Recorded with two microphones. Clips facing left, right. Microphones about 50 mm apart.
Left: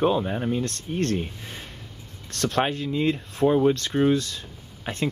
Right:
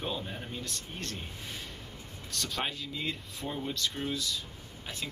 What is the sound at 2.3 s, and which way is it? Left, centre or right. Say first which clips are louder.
Speech: left 10 dB; left.